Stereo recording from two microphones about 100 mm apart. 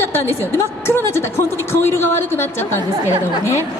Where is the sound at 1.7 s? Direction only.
25° left (ahead or behind).